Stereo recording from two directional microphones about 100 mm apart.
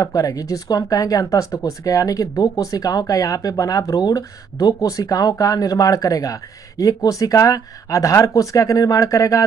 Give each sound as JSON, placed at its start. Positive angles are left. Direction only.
{"t": 0.0, "sound": "speech", "side_deg": 35}